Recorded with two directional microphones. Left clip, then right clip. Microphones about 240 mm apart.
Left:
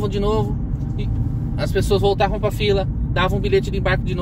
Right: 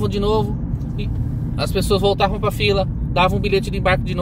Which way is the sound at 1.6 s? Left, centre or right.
Right.